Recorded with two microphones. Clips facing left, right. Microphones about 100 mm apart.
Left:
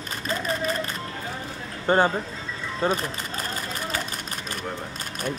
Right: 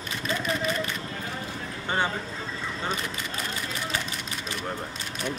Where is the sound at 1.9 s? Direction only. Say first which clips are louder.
Left 8 dB; 40° left (ahead or behind).